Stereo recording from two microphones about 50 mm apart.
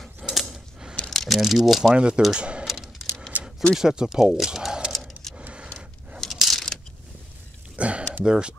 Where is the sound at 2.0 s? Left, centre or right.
Centre.